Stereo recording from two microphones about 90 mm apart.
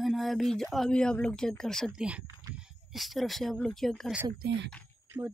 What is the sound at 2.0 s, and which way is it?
Speech, 15° right (ahead or behind).